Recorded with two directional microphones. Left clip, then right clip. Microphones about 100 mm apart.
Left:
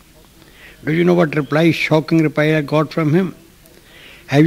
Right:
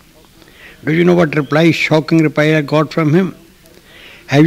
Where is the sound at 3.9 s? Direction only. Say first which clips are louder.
Right 3 dB; 30° left (ahead or behind).